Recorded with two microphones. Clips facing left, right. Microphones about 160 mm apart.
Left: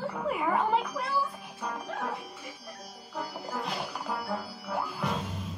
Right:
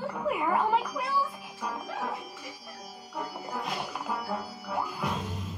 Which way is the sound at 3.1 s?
Centre (ahead or behind).